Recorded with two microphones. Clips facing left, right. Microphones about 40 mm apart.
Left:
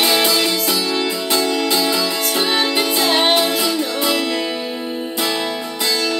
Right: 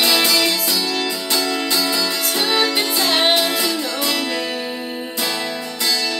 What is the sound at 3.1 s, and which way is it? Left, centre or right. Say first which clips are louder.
Music: left 1 dB; centre.